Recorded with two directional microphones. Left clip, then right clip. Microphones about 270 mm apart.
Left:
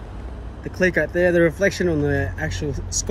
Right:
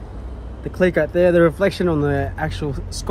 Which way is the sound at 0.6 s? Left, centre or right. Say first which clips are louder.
Right 2 dB; right.